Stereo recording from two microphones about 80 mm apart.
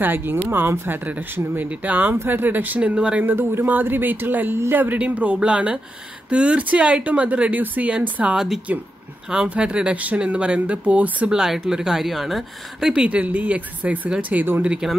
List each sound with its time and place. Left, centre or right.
0.0 s speech: right
3.3 s speech: right